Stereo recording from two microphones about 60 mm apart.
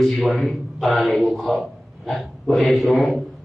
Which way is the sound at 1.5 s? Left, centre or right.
Centre.